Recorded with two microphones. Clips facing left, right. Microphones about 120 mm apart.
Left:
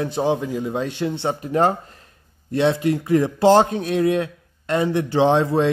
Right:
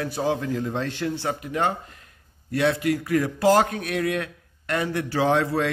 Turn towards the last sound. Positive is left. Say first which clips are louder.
# left 5 dB
turn(degrees=25)  # may be behind; listen again after turning